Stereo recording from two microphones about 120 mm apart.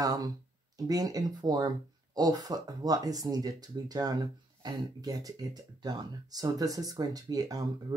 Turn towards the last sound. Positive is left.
turn(degrees=-30)  # may be behind; listen again after turning